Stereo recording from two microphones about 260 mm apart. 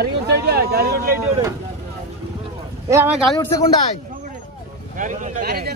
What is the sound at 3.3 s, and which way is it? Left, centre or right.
Speech, centre.